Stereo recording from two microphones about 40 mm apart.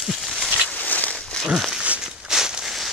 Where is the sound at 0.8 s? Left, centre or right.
Left.